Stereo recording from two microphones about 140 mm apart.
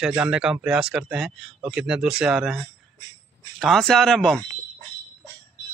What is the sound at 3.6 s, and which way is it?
Speech, centre (ahead or behind).